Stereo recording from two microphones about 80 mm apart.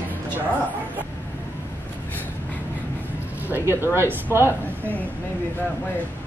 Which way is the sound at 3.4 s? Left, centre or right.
Right.